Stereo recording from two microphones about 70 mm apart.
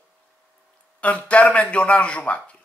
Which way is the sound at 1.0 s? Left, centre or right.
Centre.